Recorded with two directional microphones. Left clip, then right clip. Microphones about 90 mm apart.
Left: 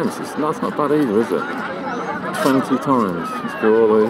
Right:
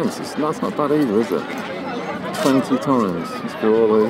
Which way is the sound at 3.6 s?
20° right (ahead or behind).